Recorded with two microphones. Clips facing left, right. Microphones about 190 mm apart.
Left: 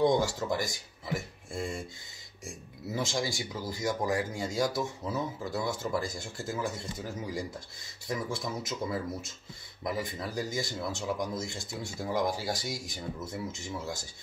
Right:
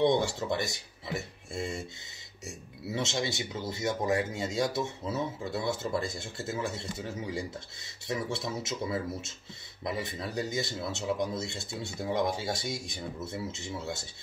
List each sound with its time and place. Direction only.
0.0 s speech: 25° right (ahead or behind)